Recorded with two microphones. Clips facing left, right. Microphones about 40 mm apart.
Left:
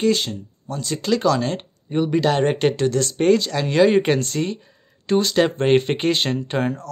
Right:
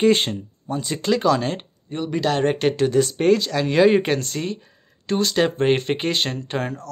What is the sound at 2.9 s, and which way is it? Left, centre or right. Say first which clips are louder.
Speech: right 3 dB; centre.